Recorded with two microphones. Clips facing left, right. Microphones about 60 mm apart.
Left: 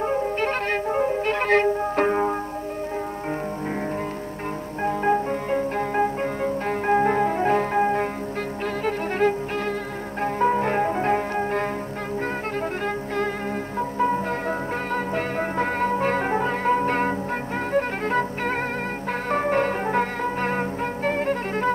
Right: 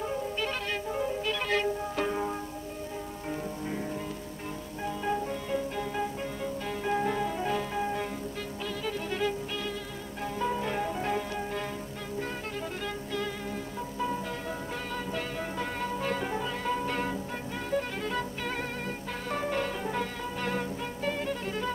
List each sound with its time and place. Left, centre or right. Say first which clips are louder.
0.0 s music: left 9 dB; left
4.8 s music: left 10 dB; left
9.2 s music: left 12 dB; left
12.8 s music: left 8 dB; left